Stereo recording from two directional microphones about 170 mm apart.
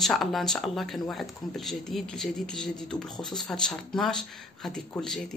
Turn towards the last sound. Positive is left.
turn(degrees=5)  # may be behind; listen again after turning